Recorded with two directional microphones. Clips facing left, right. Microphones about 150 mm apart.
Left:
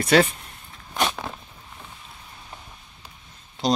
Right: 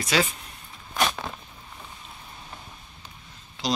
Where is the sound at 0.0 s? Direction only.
55° left (ahead or behind).